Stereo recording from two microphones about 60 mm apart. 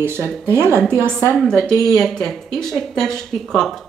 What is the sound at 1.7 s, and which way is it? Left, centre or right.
A woman's voice, centre.